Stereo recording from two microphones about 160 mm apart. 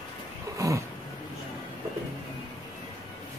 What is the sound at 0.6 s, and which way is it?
Cat, 20° right (ahead or behind).